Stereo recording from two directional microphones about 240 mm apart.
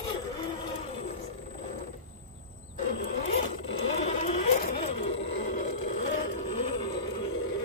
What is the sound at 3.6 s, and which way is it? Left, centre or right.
Sewing machine, left.